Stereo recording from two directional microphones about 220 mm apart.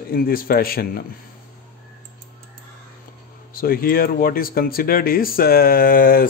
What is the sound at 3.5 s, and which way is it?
Speech, 40° left (ahead or behind).